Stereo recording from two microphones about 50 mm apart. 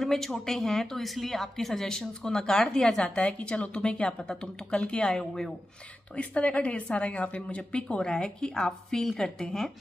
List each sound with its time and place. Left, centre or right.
0.0 s a woman's voice: centre
3.2 s a woman's voice: left